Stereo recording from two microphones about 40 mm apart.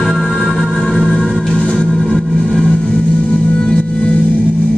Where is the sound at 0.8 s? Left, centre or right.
Centre.